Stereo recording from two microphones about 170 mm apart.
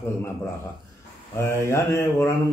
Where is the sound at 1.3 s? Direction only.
15° left (ahead or behind).